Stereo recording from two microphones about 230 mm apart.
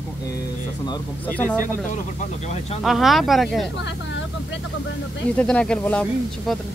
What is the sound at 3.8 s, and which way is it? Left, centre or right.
Speech, left.